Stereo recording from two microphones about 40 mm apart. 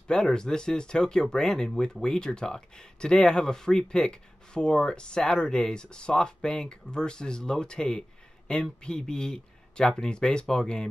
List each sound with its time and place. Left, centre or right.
0.1 s speech: centre